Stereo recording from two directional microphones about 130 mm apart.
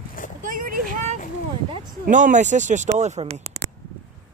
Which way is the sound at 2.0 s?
75° right (ahead or behind).